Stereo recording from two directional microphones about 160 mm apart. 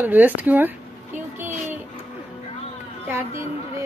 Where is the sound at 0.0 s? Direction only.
10° right (ahead or behind).